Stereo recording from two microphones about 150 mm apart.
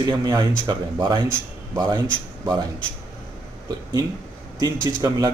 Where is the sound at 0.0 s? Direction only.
25° right (ahead or behind).